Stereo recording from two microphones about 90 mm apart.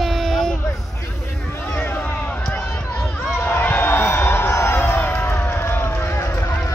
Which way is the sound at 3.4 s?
20° left (ahead or behind).